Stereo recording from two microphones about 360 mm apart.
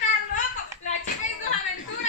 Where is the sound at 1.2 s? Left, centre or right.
Left.